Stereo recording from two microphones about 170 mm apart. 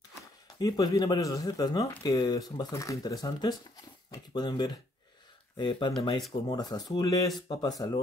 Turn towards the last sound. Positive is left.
turn(degrees=25)  # may be behind; listen again after turning